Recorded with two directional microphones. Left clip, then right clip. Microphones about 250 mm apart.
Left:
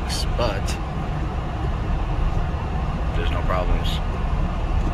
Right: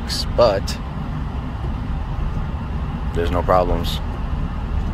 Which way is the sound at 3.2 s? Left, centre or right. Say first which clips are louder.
Right 9 dB; right.